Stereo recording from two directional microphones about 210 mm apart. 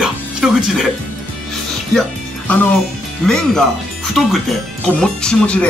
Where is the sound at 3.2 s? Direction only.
5° left (ahead or behind).